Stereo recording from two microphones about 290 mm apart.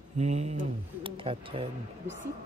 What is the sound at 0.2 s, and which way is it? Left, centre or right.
Speech, right.